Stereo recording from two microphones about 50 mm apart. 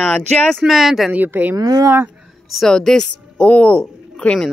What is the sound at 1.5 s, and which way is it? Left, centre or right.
Speech, right.